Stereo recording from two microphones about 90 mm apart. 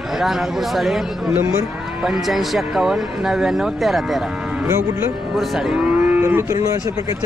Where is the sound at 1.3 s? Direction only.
30° right (ahead or behind).